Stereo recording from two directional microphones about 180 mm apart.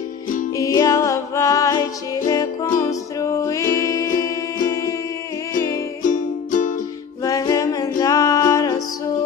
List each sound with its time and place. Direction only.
0.6 s music: 20° left (ahead or behind)
6.0 s music: 45° left (ahead or behind)
7.2 s music: 20° left (ahead or behind)